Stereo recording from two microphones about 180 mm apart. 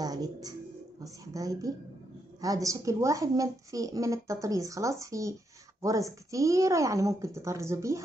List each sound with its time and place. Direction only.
0.0 s speech: 20° right (ahead or behind)